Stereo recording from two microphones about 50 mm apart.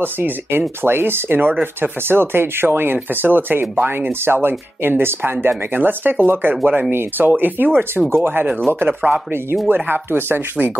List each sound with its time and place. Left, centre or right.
0.0 s speech: right
5.8 s speech: right
6.5 s speech: right
6.9 s speech: right
8.7 s speech: right
9.8 s speech: right